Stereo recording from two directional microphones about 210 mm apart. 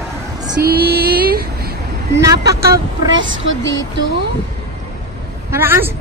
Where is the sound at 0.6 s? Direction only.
45° right (ahead or behind).